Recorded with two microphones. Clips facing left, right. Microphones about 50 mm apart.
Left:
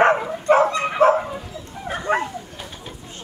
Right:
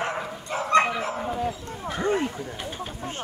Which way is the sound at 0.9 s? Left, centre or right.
Left.